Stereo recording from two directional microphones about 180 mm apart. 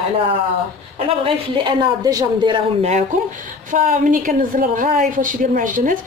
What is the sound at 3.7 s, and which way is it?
A woman's voice, 45° right (ahead or behind).